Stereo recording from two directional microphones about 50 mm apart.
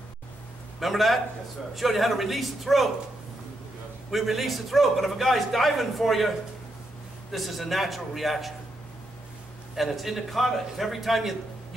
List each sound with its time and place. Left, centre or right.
0.7 s a man's voice: centre
4.1 s a man's voice: centre
9.8 s a man's voice: centre